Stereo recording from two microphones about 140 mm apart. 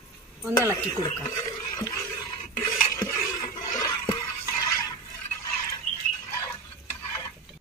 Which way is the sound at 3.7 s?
25° left (ahead or behind).